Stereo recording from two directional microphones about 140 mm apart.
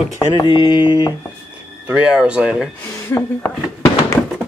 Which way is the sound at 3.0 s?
20° left (ahead or behind).